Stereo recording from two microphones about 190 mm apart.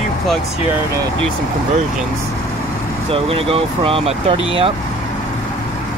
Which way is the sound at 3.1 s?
30° right (ahead or behind).